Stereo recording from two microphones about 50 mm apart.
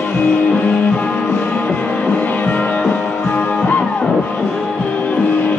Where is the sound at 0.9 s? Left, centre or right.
Left.